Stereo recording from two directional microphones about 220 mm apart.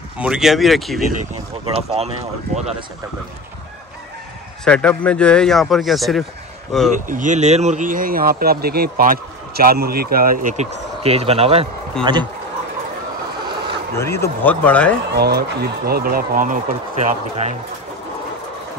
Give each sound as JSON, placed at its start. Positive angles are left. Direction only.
{"t": 0.2, "sound": "a man's voice", "side_deg": -5}
{"t": 1.7, "sound": "speech", "side_deg": -25}
{"t": 4.6, "sound": "a man's voice", "side_deg": 5}
{"t": 7.1, "sound": "speech", "side_deg": -35}
{"t": 13.9, "sound": "a man's voice", "side_deg": 10}
{"t": 15.0, "sound": "speech", "side_deg": -45}